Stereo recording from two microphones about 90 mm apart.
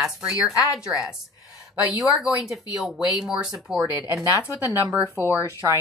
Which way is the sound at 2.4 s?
Centre (ahead or behind).